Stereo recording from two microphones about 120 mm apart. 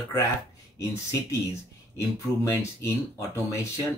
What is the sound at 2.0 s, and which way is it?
Speech, 25° left (ahead or behind).